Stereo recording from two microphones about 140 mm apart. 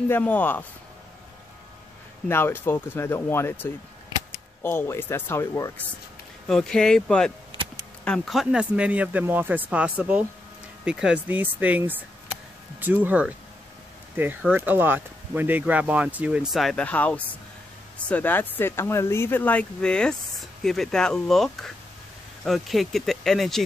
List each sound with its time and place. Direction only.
0.1 s speech: 10° left (ahead or behind)
2.2 s speech: 15° left (ahead or behind)
6.4 s speech: 5° left (ahead or behind)